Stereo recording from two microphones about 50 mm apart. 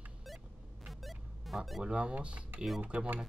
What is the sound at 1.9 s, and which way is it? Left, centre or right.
Speech, centre.